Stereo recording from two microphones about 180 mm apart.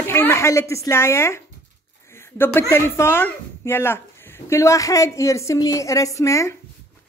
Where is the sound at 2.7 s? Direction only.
15° left (ahead or behind).